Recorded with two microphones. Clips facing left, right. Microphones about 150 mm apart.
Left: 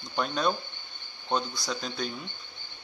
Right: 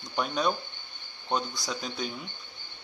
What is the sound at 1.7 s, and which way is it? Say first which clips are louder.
Speech: left 1 dB; 5° right (ahead or behind).